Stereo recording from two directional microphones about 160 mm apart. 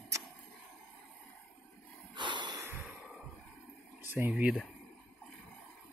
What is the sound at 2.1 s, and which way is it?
Snort, 30° right (ahead or behind).